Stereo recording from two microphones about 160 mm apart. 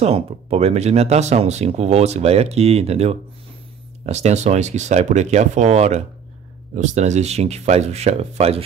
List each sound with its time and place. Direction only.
0.0 s speech: 40° right (ahead or behind)